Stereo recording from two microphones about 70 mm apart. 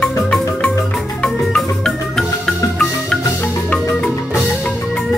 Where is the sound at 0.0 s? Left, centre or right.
Centre.